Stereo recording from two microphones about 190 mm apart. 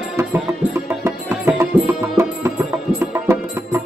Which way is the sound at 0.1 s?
10° right (ahead or behind).